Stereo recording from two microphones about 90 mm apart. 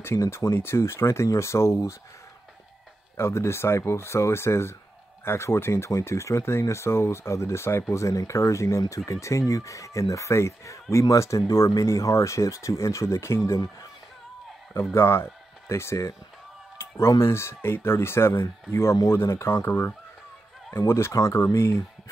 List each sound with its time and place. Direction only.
0.0 s speech: 30° left (ahead or behind)
3.2 s speech: 30° left (ahead or behind)
15.0 s speech: 25° left (ahead or behind)
17.2 s speech: 30° left (ahead or behind)